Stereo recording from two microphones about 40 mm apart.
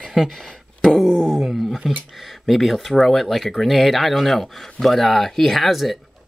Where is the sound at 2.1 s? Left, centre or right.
Centre.